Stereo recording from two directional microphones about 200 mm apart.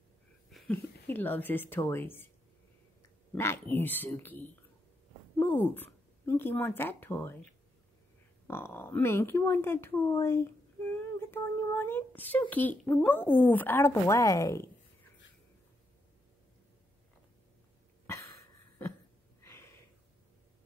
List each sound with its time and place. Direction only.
0.5 s a sound: centre (ahead or behind)
1.0 s speech: 10° left (ahead or behind)
3.3 s speech: 10° left (ahead or behind)
8.5 s speech: 10° left (ahead or behind)
18.0 s cough: 15° left (ahead or behind)
19.4 s a sound: 10° left (ahead or behind)